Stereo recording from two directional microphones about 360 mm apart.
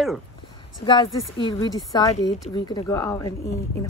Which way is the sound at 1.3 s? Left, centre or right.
Centre.